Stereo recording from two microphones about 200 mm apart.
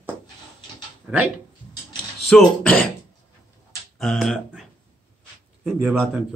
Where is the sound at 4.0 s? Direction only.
5° left (ahead or behind).